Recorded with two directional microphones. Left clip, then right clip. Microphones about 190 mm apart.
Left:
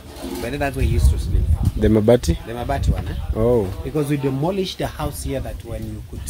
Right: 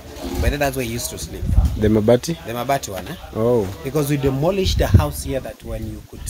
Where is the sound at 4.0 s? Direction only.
45° right (ahead or behind).